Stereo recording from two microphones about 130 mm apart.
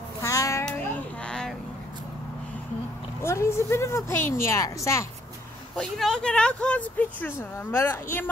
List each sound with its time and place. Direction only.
0.2 s child singing: 25° left (ahead or behind)
0.7 s a sound: 10° left (ahead or behind)
3.2 s a woman's voice: 20° left (ahead or behind)
5.8 s speech: 5° left (ahead or behind)